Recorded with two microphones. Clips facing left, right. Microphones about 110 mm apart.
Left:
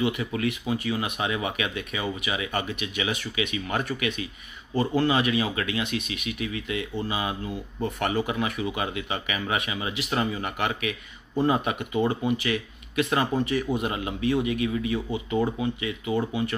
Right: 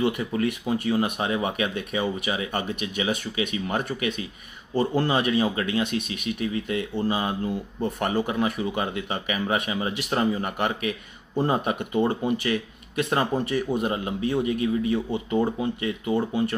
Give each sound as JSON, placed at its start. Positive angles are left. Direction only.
{"t": 0.0, "sound": "speech", "side_deg": -45}